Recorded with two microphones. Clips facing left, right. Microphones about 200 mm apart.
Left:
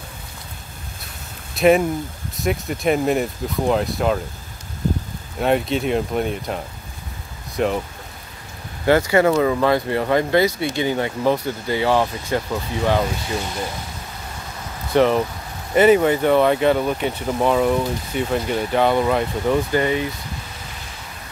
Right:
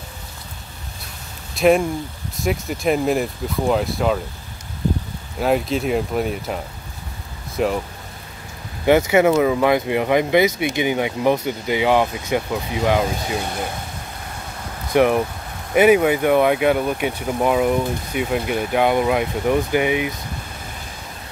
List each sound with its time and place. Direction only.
1.5 s speech: centre (ahead or behind)
5.4 s speech: centre (ahead or behind)
8.8 s speech: 15° right (ahead or behind)
15.0 s speech: 10° right (ahead or behind)